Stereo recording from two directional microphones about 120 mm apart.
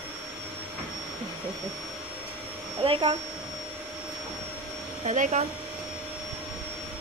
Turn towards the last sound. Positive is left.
turn(degrees=-85)